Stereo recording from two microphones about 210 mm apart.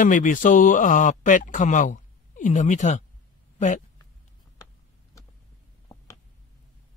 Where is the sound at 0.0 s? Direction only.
40° left (ahead or behind).